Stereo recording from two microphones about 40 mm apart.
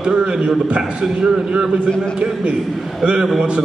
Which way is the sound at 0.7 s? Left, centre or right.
Right.